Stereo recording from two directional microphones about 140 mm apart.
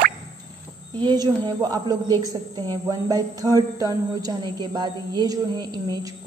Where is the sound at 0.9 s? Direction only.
35° right (ahead or behind).